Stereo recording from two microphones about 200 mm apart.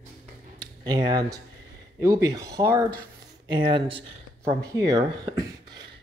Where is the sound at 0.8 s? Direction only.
20° right (ahead or behind).